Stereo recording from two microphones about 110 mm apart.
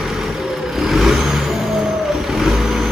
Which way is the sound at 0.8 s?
5° right (ahead or behind).